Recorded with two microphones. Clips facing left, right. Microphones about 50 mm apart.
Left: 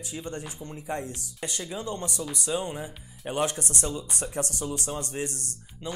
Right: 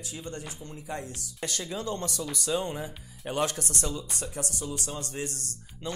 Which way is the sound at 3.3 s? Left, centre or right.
Left.